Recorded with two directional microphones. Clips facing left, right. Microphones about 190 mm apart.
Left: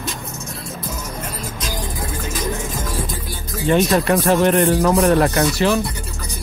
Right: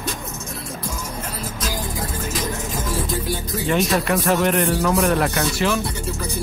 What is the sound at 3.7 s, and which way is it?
Speech, 30° left (ahead or behind).